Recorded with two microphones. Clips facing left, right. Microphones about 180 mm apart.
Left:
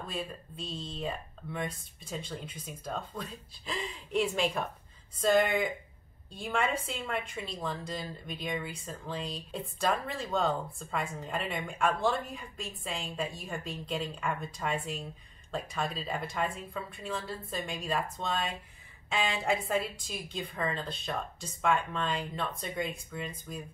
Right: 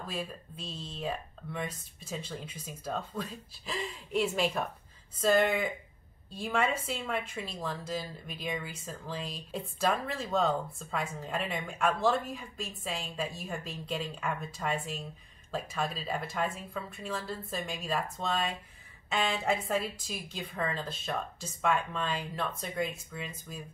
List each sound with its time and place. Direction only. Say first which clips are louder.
0.0 s a woman's voice: even; 5° right (ahead or behind)